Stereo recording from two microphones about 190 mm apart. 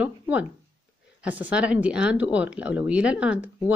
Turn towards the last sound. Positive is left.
turn(degrees=-5)  # may be behind; listen again after turning